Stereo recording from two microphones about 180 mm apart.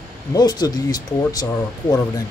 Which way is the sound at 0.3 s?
20° left (ahead or behind).